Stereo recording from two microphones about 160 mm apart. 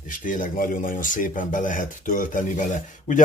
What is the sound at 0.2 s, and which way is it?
Speech, 55° left (ahead or behind).